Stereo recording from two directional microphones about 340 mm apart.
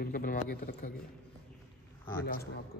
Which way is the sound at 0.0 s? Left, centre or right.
Left.